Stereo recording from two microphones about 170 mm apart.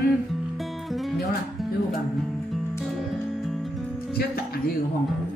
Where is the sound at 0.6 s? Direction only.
Centre (ahead or behind).